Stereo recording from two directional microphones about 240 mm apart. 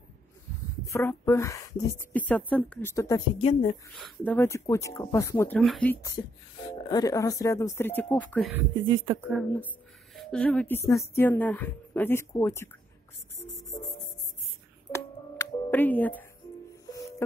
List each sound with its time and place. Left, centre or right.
0.8 s a woman's voice: centre
4.2 s a woman's voice: centre
6.9 s a woman's voice: centre
8.8 s speech: centre
9.2 s a woman's voice: centre
14.9 s music: centre